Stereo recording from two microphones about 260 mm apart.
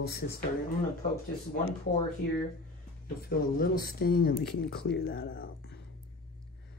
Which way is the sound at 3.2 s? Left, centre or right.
Left.